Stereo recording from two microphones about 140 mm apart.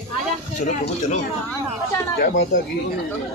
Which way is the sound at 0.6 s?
55° left (ahead or behind).